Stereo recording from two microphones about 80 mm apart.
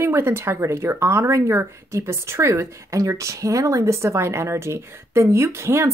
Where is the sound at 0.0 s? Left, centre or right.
Right.